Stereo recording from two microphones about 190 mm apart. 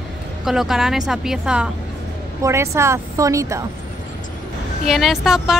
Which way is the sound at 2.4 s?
15° right (ahead or behind).